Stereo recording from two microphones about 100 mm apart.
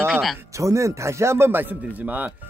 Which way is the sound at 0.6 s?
30° right (ahead or behind).